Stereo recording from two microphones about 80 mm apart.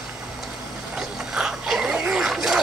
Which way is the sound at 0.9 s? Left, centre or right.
Centre.